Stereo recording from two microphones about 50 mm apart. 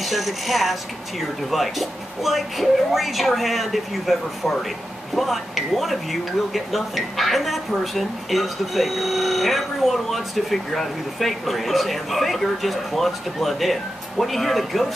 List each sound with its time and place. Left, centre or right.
0.0 s speech: centre